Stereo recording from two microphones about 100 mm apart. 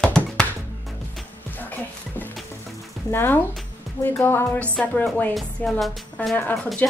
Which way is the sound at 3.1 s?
20° left (ahead or behind).